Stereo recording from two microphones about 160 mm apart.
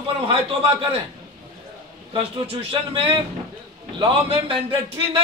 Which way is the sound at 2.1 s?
35° right (ahead or behind).